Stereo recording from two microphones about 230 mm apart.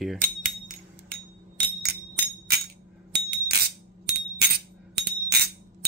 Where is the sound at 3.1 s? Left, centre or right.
Right.